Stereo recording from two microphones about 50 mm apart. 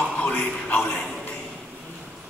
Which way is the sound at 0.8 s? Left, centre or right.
Centre.